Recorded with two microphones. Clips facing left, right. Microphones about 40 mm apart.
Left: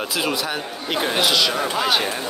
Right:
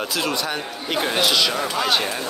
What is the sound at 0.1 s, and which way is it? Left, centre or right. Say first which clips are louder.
Speech: left 1 dB; centre.